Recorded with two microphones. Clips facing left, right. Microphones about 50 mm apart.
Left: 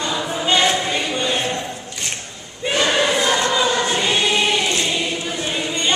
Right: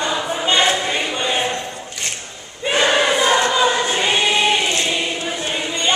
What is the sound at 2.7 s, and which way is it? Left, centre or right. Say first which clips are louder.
Choir: right 2 dB; centre.